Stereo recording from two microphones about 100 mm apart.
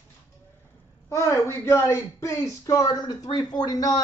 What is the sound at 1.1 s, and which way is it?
Speech, 30° left (ahead or behind).